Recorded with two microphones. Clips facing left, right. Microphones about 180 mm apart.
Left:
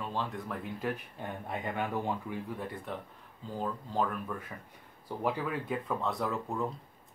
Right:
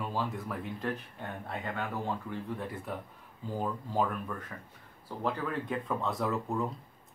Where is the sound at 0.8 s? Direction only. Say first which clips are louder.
Left 2 dB; 15° left (ahead or behind).